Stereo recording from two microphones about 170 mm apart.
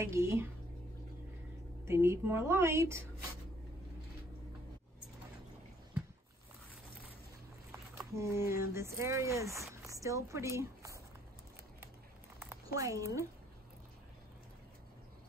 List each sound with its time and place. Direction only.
0.0 s a woman's voice: 15° right (ahead or behind)
1.9 s a woman's voice: 15° right (ahead or behind)
8.1 s speech: 15° right (ahead or behind)
12.4 s a woman's voice: 15° right (ahead or behind)